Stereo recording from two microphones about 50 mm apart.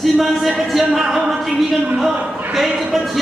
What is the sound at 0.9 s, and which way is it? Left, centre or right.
Speech, centre.